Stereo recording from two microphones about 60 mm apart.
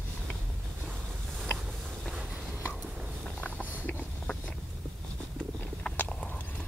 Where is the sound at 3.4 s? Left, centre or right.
Left.